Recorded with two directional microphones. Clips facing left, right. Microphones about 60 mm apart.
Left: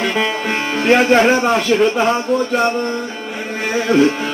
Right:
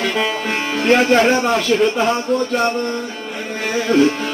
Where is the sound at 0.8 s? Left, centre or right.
Centre.